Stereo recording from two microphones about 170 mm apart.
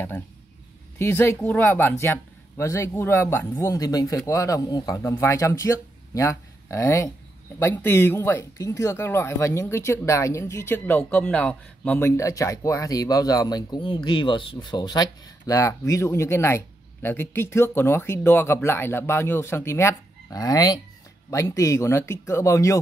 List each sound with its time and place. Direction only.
0.9 s a man's voice: 15° left (ahead or behind)